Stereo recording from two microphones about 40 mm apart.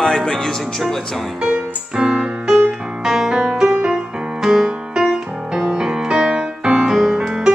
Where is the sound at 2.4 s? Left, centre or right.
Centre.